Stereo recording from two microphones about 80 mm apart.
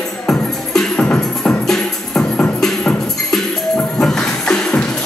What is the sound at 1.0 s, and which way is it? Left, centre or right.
Music, centre.